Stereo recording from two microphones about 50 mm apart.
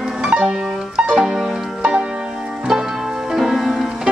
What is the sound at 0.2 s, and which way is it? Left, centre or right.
Music, centre.